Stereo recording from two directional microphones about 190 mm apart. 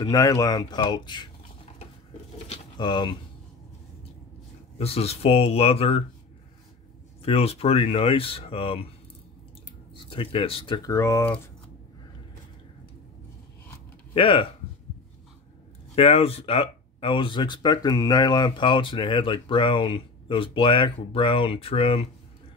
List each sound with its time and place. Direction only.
0.0 s speech: 20° left (ahead or behind)
2.5 s speech: 25° left (ahead or behind)
4.7 s speech: 30° left (ahead or behind)
7.2 s speech: 30° left (ahead or behind)
9.9 s speech: 25° left (ahead or behind)
10.9 s speech: 15° left (ahead or behind)
14.1 s speech: 30° left (ahead or behind)
15.9 s speech: 30° left (ahead or behind)